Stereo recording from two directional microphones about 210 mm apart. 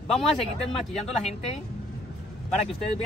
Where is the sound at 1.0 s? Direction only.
30° left (ahead or behind).